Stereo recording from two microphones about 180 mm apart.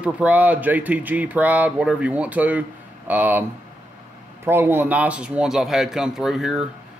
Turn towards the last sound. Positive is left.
turn(degrees=-5)  # may be behind; listen again after turning